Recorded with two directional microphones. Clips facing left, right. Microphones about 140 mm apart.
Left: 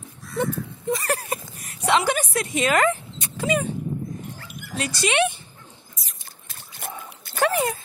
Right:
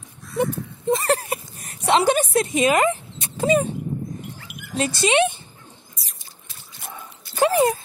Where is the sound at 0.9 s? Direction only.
25° right (ahead or behind).